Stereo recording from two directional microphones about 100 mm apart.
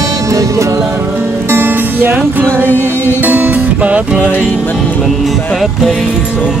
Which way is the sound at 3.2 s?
15° right (ahead or behind).